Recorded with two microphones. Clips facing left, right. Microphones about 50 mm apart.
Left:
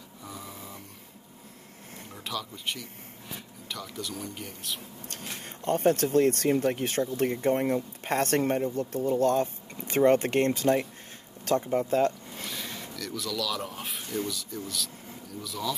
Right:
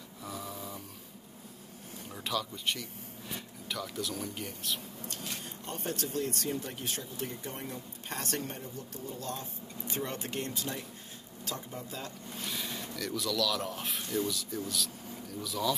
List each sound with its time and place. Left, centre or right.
0.2 s snoring: centre
2.2 s speech: centre
5.0 s speech: left
12.7 s speech: centre